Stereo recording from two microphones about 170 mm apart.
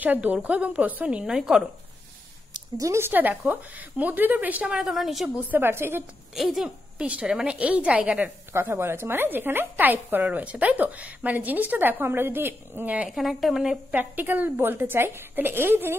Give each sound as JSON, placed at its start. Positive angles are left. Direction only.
{"t": 0.0, "sound": "a woman's voice", "side_deg": -10}
{"t": 2.5, "sound": "a woman's voice", "side_deg": -20}
{"t": 6.3, "sound": "a woman's voice", "side_deg": 0}